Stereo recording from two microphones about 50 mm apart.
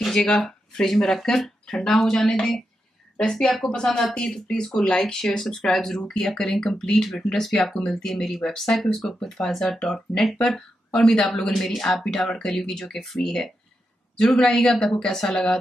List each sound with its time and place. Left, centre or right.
0.0 s speech: centre